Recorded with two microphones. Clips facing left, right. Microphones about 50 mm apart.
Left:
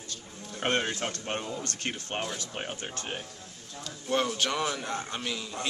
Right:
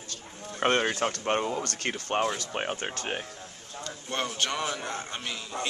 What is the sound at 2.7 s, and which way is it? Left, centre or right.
Speech, right.